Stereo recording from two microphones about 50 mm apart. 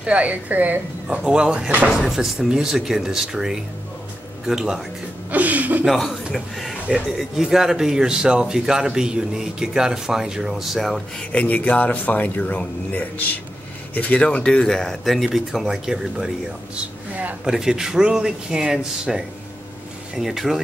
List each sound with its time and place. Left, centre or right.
0.0 s speech: right
1.1 s a man's voice: centre
5.3 s speech: right
5.9 s speech: centre
7.4 s a man's voice: centre
11.4 s speech: left
14.2 s speech: left
14.7 s speech: centre
17.5 s a man's voice: centre